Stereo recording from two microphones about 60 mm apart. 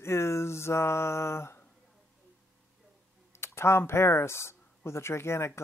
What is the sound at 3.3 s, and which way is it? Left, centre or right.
Speech, left.